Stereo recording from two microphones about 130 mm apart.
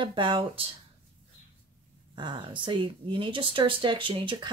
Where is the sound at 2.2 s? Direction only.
35° right (ahead or behind).